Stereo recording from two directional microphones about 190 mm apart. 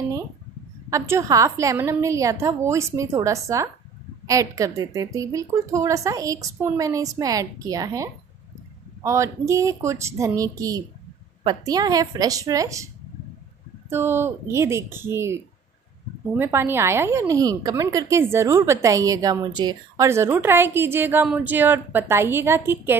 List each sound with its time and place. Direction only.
0.8 s a woman's voice: 15° right (ahead or behind)